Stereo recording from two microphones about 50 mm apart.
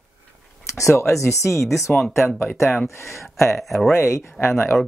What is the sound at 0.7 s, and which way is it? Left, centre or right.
Speech, left.